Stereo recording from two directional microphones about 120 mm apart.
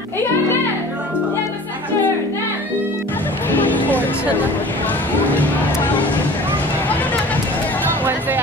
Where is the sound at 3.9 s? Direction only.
15° left (ahead or behind).